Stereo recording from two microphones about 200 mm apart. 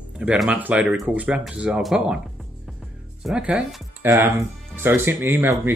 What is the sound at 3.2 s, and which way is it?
Speech, 5° right (ahead or behind).